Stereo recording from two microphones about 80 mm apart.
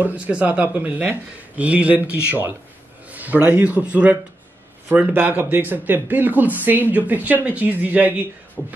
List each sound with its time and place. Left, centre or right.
0.0 s speech: centre